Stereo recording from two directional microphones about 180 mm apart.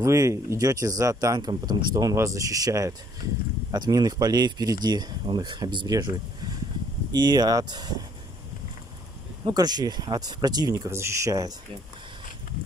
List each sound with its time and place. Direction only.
0.0 s speech: 15° right (ahead or behind)
9.4 s speech: 20° right (ahead or behind)